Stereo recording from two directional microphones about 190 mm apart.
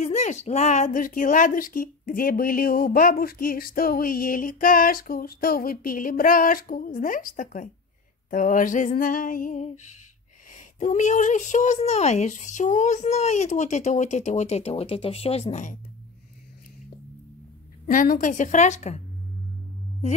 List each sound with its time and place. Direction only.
0.0 s a woman's voice: 40° left (ahead or behind)
17.8 s a woman's voice: 45° left (ahead or behind)